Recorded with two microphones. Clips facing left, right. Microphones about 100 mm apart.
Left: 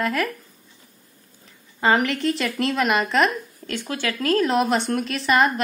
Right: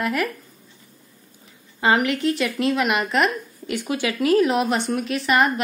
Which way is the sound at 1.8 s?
5° right (ahead or behind).